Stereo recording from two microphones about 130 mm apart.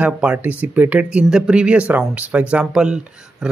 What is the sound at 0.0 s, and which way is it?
Speech, 10° right (ahead or behind).